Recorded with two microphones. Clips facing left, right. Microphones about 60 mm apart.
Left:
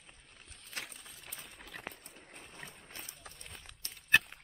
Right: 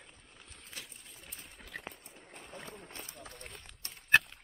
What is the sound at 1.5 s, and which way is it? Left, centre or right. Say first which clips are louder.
Boat: right 2 dB; centre.